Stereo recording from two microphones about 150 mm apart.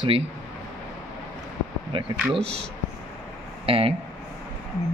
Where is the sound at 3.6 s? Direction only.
40° right (ahead or behind).